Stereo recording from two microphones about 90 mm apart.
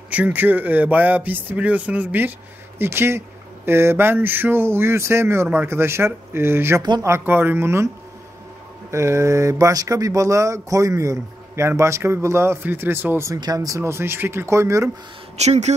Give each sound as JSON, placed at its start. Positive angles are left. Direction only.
{"t": 0.1, "sound": "speech", "side_deg": -20}
{"t": 8.9, "sound": "speech", "side_deg": -35}
{"t": 13.3, "sound": "speech", "side_deg": -45}